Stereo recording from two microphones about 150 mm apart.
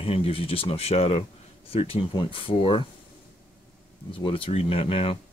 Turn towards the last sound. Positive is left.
turn(degrees=40)  # may be behind; listen again after turning